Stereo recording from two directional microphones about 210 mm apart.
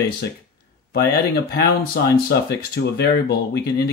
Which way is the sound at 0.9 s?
50° left (ahead or behind).